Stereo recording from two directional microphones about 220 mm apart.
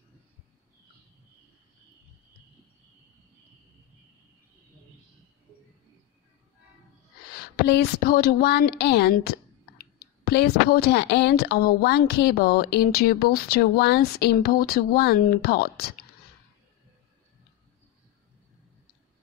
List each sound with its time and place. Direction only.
7.5 s a woman's voice: 45° left (ahead or behind)